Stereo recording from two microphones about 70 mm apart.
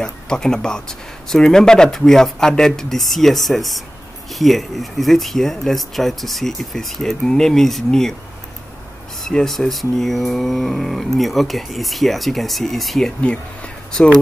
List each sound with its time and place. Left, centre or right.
0.0 s speech: centre
9.2 s speech: centre
13.2 s a sound: centre